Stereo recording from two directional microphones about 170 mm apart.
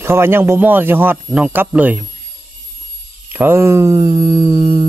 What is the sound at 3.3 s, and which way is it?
Speech, 15° right (ahead or behind).